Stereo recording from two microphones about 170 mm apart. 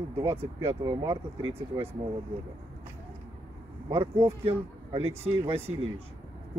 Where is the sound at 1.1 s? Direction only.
35° right (ahead or behind).